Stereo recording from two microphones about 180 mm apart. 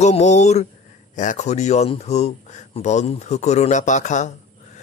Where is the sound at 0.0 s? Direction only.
40° left (ahead or behind).